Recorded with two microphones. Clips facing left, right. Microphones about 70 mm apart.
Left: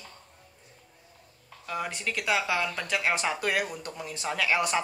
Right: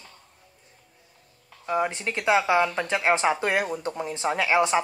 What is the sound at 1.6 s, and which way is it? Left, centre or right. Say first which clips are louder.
Speech: right 7 dB; right.